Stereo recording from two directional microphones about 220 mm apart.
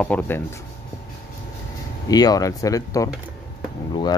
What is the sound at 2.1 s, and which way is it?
Speech, 15° left (ahead or behind).